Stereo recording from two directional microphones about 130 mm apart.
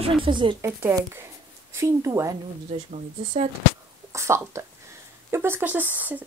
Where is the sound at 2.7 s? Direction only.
50° right (ahead or behind).